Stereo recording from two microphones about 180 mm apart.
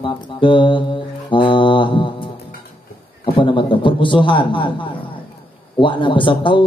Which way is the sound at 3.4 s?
25° left (ahead or behind).